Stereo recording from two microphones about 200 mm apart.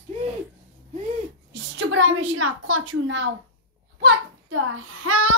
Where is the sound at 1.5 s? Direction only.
70° right (ahead or behind).